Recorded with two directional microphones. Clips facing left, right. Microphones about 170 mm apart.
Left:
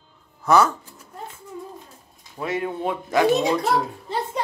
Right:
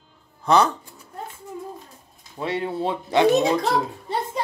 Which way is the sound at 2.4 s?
30° right (ahead or behind).